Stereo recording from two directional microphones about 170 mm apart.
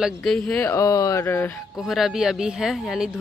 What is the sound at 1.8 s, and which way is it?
Speech, centre (ahead or behind).